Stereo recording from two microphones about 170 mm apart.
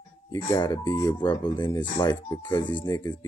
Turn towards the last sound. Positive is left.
turn(degrees=25)  # may be behind; listen again after turning